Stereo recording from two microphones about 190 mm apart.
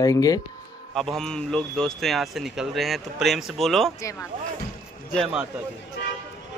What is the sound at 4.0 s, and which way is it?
Speech, 15° left (ahead or behind).